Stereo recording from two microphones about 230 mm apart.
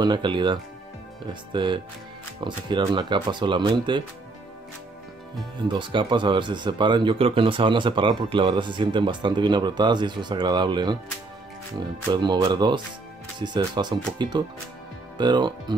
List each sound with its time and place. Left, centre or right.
0.0 s speech: centre
5.6 s speech: right
12.1 s speech: centre